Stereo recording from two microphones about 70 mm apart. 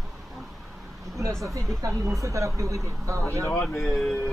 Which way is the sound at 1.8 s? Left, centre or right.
Right.